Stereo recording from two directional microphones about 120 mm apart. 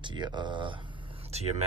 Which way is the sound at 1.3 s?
65° right (ahead or behind).